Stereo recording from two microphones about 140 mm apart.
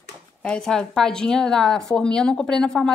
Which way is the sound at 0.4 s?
5° left (ahead or behind).